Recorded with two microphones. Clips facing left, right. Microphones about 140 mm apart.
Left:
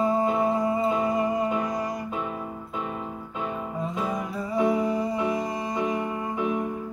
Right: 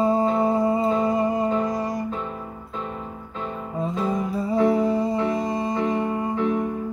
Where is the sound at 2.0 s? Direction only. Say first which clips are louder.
Right 1 dB; 10° left (ahead or behind).